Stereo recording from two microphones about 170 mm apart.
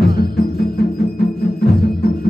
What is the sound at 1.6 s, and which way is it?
Music, 65° left (ahead or behind).